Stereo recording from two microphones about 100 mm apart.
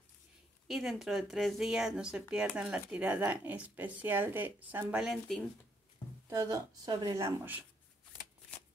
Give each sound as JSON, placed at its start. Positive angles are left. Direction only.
{"t": 0.7, "sound": "a woman's voice", "side_deg": 0}
{"t": 5.0, "sound": "speech", "side_deg": 0}
{"t": 6.2, "sound": "speech", "side_deg": -35}
{"t": 7.2, "sound": "speech", "side_deg": -20}